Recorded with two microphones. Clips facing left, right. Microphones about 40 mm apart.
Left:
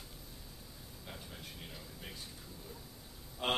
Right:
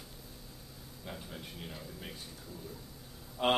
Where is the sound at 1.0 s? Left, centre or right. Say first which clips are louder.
Right 5 dB; centre.